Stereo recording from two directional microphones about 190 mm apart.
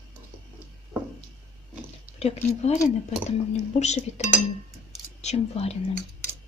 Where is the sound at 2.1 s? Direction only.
35° left (ahead or behind).